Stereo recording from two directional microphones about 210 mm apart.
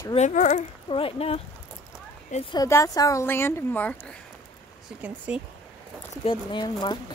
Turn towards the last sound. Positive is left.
turn(degrees=20)  # may be behind; listen again after turning